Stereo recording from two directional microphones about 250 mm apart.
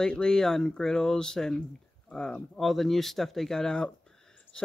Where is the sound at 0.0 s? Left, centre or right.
Centre.